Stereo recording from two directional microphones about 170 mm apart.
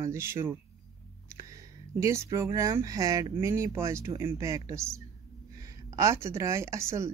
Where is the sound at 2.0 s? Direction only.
15° right (ahead or behind).